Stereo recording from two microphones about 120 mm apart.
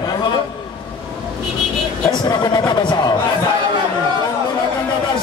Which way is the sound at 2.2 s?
40° left (ahead or behind).